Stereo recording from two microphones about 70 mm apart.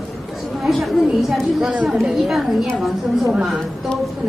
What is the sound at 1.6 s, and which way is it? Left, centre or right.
Speech, centre.